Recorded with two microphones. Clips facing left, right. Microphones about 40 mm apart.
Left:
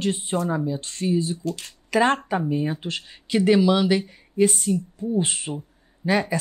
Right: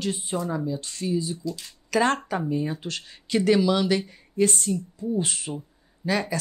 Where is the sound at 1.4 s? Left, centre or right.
Left.